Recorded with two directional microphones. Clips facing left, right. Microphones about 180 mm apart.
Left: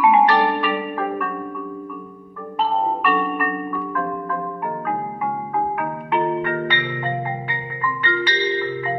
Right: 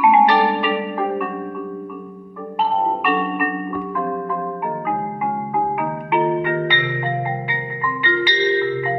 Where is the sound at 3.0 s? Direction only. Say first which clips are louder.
Right 1 dB; 20° right (ahead or behind).